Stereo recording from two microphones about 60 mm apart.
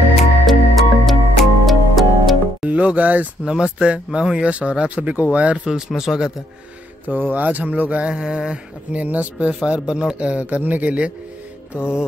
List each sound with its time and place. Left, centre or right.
0.2 s music: centre
2.6 s speech: right
3.4 s speech: centre
5.7 s mantra: centre
7.1 s speech: right
8.0 s mantra: centre
9.0 s speech: right
9.5 s speech: centre